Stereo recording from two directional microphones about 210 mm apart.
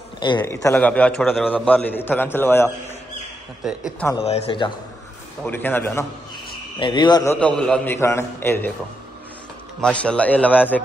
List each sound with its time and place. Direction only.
0.2 s a man's voice: 20° left (ahead or behind)
4.2 s a man's voice: 30° left (ahead or behind)
5.4 s a man's voice: 10° left (ahead or behind)
6.8 s a man's voice: 20° left (ahead or behind)
7.3 s a man's voice: 5° left (ahead or behind)
9.8 s a man's voice: 5° left (ahead or behind)